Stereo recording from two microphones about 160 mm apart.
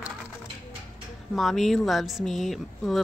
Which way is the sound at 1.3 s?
Centre (ahead or behind).